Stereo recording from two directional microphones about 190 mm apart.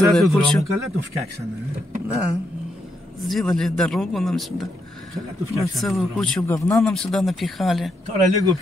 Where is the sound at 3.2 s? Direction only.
Centre (ahead or behind).